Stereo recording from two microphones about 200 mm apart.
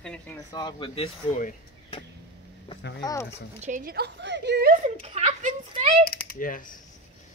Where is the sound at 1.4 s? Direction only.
40° left (ahead or behind).